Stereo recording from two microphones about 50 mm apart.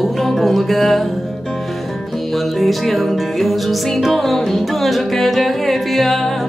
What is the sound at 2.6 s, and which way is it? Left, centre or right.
Music, centre.